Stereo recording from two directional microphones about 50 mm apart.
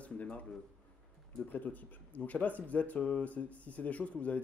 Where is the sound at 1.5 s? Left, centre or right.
Left.